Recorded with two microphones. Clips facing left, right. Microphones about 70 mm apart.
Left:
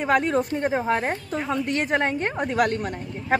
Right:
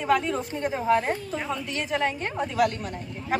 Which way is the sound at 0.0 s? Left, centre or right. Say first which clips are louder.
Left 3 dB; left.